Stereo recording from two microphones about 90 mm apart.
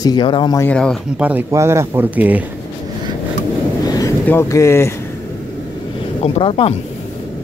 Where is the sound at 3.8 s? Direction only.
45° left (ahead or behind).